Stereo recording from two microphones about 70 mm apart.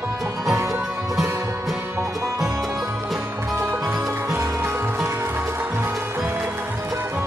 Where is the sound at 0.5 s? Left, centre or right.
Right.